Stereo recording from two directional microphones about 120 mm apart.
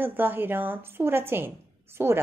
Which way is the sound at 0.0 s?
15° right (ahead or behind).